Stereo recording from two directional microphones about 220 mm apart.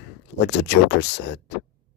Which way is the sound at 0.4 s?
50° left (ahead or behind).